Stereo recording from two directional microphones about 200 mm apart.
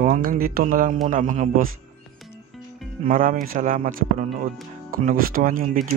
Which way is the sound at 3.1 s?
45° right (ahead or behind).